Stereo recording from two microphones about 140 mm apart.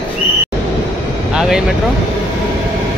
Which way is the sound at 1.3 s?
5° right (ahead or behind).